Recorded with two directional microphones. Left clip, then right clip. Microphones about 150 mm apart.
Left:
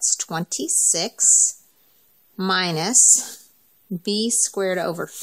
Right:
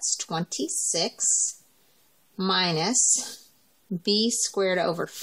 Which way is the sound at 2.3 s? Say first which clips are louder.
Left 3 dB; 40° left (ahead or behind).